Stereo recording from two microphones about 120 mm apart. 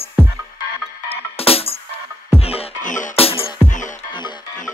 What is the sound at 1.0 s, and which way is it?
Music, 55° left (ahead or behind).